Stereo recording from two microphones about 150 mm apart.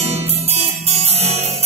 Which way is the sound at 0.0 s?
45° right (ahead or behind).